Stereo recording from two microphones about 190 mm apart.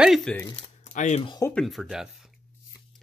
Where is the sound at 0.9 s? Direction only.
40° left (ahead or behind).